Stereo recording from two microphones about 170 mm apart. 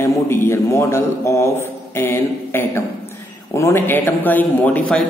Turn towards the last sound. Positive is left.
turn(degrees=10)  # may be behind; listen again after turning